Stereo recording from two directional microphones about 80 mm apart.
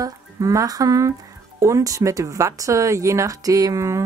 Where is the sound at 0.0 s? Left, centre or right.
Right.